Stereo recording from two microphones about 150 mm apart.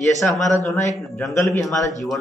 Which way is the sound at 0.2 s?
10° left (ahead or behind).